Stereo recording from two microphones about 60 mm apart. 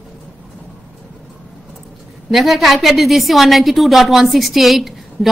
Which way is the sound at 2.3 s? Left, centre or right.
Centre.